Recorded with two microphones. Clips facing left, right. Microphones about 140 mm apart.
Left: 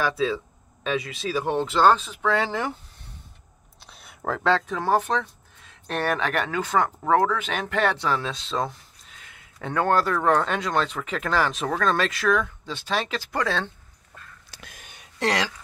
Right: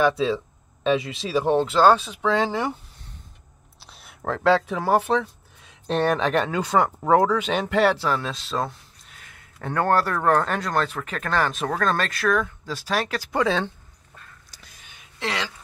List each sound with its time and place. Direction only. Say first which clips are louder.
0.0 s speech: right 4 dB; 20° right (ahead or behind)
1.6 s speech: even; 5° right (ahead or behind)
3.8 s speech: even; centre (ahead or behind); by 13.7 s 15° right (ahead or behind)
14.8 s a sound: left 4 dB; 40° left (ahead or behind)